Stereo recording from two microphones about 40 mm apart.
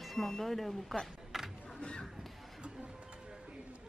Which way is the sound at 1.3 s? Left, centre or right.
Centre.